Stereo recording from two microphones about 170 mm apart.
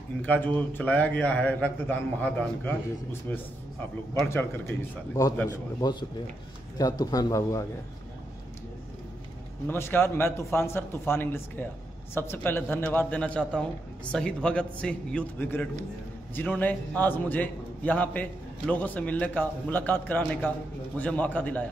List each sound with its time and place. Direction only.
0.2 s a man's voice: 10° left (ahead or behind)
9.7 s a man's voice: 15° left (ahead or behind)